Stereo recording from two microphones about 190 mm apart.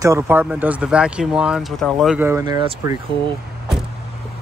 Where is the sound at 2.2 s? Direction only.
15° right (ahead or behind).